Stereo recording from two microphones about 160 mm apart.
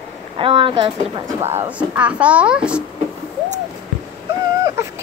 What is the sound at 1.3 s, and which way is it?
Speech, 15° right (ahead or behind).